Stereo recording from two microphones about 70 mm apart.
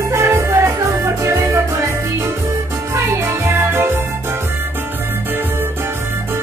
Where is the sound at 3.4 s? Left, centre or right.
Right.